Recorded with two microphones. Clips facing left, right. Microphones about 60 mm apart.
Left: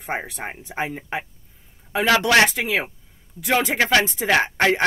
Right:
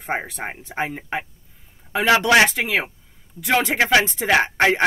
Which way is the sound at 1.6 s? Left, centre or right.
Centre.